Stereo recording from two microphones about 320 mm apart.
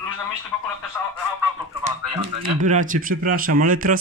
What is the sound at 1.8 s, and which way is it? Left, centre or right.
Speech, centre.